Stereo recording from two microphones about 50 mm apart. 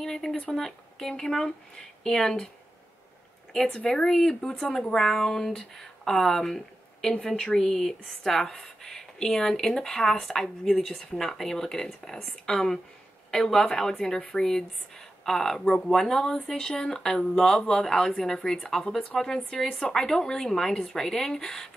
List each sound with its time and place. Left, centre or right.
0.0 s speech: centre
3.5 s speech: centre